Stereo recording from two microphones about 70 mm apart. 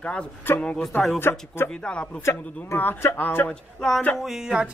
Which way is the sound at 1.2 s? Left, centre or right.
Left.